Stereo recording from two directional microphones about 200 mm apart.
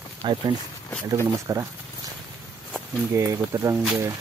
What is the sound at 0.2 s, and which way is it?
Speech, 20° right (ahead or behind).